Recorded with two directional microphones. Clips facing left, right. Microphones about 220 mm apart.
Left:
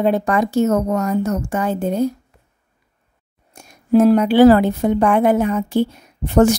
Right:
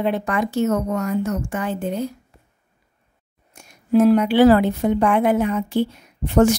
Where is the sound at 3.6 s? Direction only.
40° left (ahead or behind).